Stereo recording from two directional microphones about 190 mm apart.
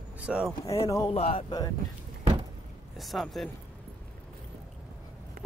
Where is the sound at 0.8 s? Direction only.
20° left (ahead or behind).